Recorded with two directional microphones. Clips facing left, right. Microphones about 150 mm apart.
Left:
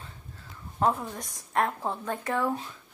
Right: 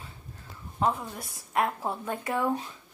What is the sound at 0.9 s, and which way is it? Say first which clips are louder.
A woman's voice: left 2 dB; 5° right (ahead or behind).